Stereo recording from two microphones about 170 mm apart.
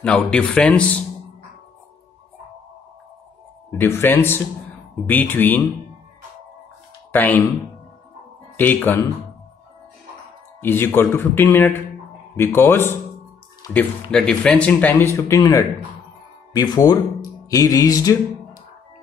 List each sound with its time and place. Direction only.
0.0 s speech: 5° left (ahead or behind)
3.7 s speech: 15° left (ahead or behind)
7.1 s speech: 10° left (ahead or behind)
8.5 s speech: 10° left (ahead or behind)
10.6 s speech: 15° left (ahead or behind)